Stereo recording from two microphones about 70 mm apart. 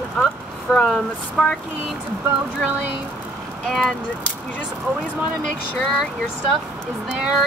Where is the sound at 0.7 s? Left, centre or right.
Centre.